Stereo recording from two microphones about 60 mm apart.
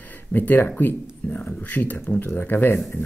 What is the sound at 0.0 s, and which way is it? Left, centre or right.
Speech, left.